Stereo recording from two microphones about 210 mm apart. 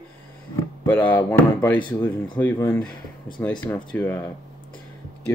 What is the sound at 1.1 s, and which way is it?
Speech, 15° left (ahead or behind).